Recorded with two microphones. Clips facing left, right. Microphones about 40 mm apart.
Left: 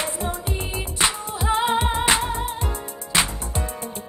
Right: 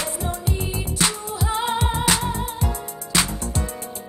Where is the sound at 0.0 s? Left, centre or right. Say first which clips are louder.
Even; left.